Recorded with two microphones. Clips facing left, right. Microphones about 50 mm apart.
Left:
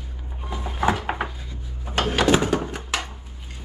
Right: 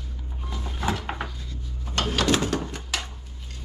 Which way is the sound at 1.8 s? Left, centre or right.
Centre.